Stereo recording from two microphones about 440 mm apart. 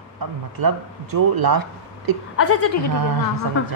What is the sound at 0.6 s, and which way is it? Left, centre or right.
Speech, right.